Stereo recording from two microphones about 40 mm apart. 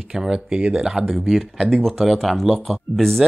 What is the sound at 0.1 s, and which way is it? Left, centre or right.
Speech, centre.